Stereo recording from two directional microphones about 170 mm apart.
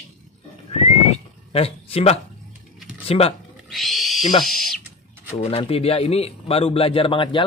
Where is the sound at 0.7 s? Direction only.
35° left (ahead or behind).